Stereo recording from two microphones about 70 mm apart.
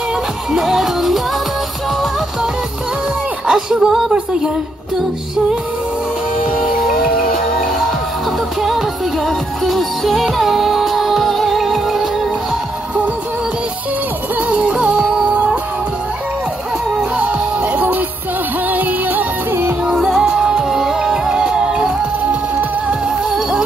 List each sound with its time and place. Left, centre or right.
0.5 s music: centre
3.4 s a sound: centre
8.6 s music: centre
14.5 s music: centre
17.2 s music: right
19.8 s music: centre